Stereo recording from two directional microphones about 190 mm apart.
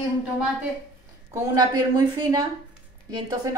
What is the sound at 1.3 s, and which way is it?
A woman's voice, 20° right (ahead or behind).